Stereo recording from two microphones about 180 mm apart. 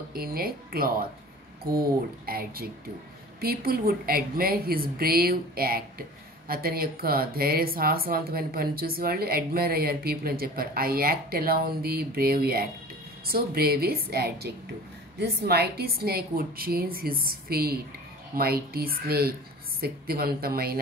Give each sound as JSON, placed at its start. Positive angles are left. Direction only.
{"t": 0.1, "sound": "speech", "side_deg": -55}